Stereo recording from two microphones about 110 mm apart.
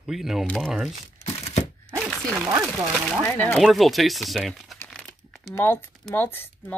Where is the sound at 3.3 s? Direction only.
20° left (ahead or behind).